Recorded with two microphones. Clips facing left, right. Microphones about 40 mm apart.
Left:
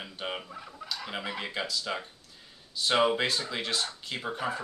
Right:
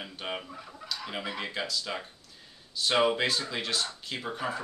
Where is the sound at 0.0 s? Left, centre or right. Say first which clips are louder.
Even; centre.